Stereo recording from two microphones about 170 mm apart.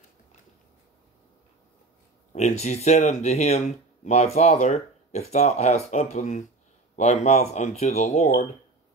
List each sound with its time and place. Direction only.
2.3 s speech: 40° left (ahead or behind)